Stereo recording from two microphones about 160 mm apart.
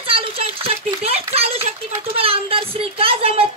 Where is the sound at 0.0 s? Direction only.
35° right (ahead or behind).